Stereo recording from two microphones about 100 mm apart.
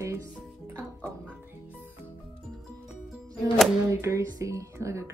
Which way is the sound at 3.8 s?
30° right (ahead or behind).